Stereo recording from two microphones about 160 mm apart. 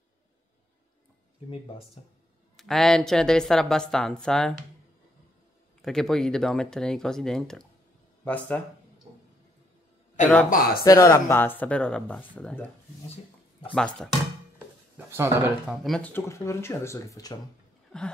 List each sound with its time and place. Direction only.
2.0 s speech: 40° left (ahead or behind)
2.5 s speech: centre (ahead or behind)
5.8 s speech: 5° left (ahead or behind)
10.5 s speech: 65° left (ahead or behind)
10.8 s speech: 20° left (ahead or behind)
13.7 s speech: 5° left (ahead or behind)
15.0 s speech: 15° right (ahead or behind)
15.6 s speech: centre (ahead or behind)
16.1 s speech: 15° left (ahead or behind)